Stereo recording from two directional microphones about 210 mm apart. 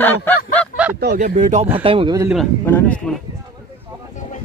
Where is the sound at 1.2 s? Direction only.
35° right (ahead or behind).